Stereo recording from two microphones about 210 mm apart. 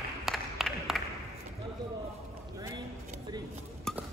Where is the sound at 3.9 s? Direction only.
Centre (ahead or behind).